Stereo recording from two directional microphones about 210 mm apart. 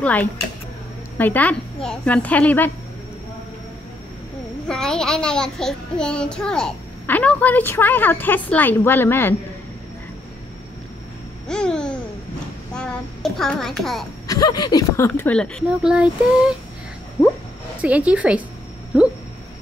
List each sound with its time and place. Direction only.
0.0 s child singing: 5° left (ahead or behind)
4.6 s child singing: 5° left (ahead or behind)
11.4 s babbling: 5° left (ahead or behind)
12.7 s a child's voice: 5° left (ahead or behind)
14.2 s child singing: 15° left (ahead or behind); by 16.5 s 5° right (ahead or behind)
17.8 s a woman's voice: 5° right (ahead or behind)